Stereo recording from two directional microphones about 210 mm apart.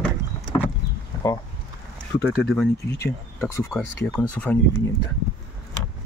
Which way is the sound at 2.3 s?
5° left (ahead or behind).